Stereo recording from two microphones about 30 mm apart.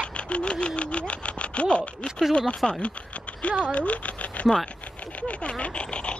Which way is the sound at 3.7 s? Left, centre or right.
Left.